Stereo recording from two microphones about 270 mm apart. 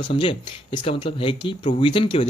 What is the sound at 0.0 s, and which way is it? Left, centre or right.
Speech, centre.